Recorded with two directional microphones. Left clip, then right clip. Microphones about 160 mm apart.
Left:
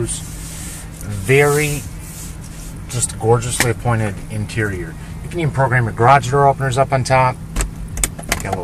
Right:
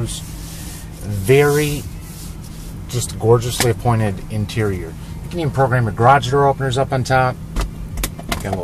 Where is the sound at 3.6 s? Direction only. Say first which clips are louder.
Right 1 dB; 60° right (ahead or behind).